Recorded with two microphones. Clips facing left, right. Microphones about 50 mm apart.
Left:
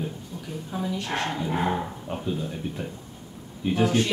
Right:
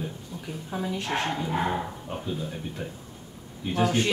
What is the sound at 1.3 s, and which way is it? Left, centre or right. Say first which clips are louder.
Dog: left 1 dB; centre.